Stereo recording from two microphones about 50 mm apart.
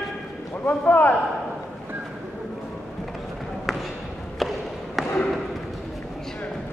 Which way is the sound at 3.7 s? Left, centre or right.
Centre.